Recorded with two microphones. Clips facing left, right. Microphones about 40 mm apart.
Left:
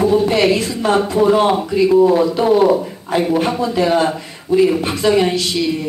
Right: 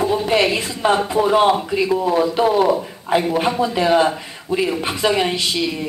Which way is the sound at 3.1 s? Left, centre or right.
Right.